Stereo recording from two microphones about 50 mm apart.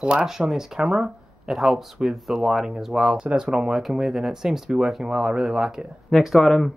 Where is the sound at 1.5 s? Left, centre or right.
Centre.